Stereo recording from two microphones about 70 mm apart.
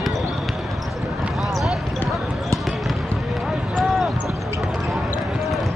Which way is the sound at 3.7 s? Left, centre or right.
Centre.